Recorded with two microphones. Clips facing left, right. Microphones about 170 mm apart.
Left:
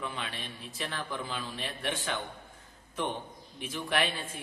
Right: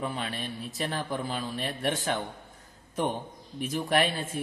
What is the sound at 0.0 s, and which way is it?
Speech, 40° right (ahead or behind).